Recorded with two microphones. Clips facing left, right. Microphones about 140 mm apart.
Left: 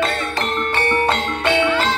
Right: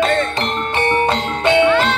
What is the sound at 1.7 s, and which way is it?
Music, 70° right (ahead or behind).